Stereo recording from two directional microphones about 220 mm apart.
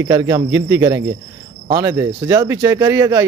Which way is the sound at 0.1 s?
15° right (ahead or behind).